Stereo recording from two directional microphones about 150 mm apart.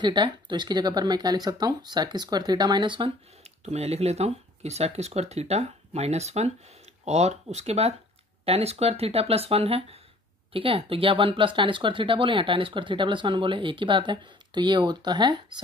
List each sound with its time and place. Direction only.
0.0 s speech: 30° right (ahead or behind)
3.4 s speech: 45° right (ahead or behind); by 15.6 s 30° right (ahead or behind)